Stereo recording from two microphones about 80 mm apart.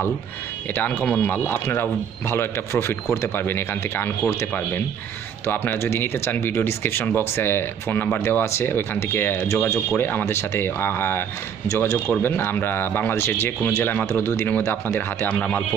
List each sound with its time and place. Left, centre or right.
0.7 s speech: left
5.5 s speech: left
12.1 s speech: left